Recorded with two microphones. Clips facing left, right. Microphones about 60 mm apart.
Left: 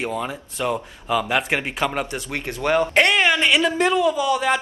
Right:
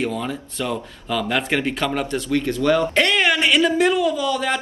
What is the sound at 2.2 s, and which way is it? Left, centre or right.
Speech, left.